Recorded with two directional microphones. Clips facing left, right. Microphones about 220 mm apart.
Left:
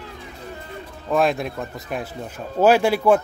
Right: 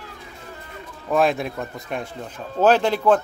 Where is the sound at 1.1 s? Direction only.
Centre (ahead or behind).